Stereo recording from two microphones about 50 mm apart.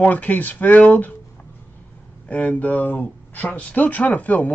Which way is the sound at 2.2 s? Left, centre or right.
Left.